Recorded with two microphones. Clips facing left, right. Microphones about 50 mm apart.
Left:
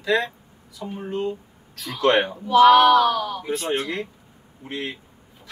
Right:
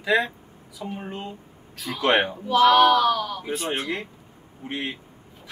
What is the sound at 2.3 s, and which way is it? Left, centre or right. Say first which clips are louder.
Speech: left 4 dB; centre.